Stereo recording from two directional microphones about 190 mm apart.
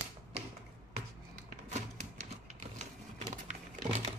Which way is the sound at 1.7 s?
35° right (ahead or behind).